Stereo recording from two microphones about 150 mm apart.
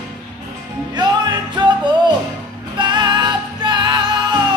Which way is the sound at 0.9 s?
30° right (ahead or behind).